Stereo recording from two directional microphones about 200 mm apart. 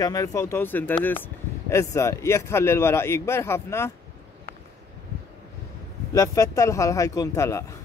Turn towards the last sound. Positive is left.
turn(degrees=15)  # may be behind; listen again after turning